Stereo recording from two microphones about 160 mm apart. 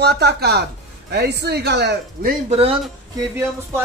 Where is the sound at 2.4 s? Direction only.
40° right (ahead or behind).